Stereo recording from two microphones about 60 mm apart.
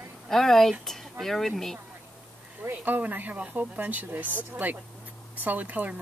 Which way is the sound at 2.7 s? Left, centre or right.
Right.